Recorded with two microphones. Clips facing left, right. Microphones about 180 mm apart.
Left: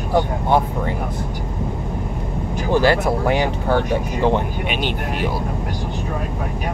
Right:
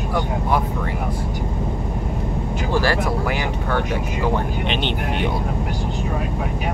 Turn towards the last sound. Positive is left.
turn(degrees=5)  # may be behind; listen again after turning